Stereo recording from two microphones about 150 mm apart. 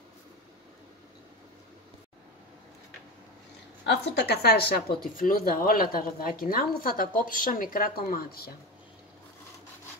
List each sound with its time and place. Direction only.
4.1 s speech: 90° left